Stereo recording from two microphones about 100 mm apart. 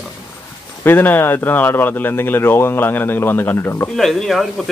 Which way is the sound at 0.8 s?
20° left (ahead or behind).